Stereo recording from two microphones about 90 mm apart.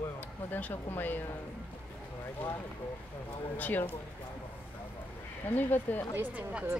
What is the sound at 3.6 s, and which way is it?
Speech, 20° left (ahead or behind).